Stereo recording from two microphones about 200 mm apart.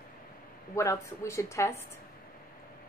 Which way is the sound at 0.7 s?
15° left (ahead or behind).